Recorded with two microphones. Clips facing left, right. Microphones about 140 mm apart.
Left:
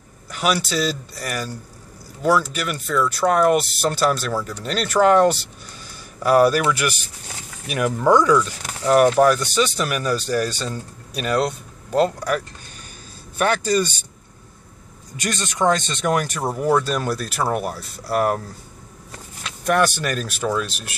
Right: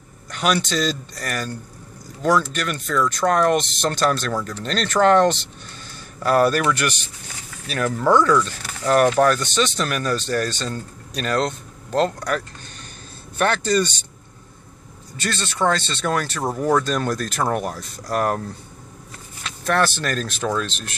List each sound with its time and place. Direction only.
0.3 s speech: 5° left (ahead or behind)
15.1 s speech: 15° left (ahead or behind)
19.6 s speech: 15° left (ahead or behind)